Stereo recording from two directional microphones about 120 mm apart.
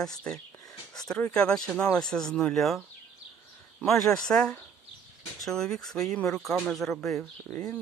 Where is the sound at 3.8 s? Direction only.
Centre (ahead or behind).